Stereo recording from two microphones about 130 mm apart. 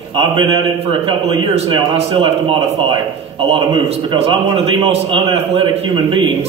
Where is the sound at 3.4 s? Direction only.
50° right (ahead or behind).